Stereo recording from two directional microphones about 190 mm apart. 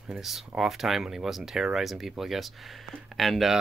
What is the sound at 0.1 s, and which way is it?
Speech, centre (ahead or behind).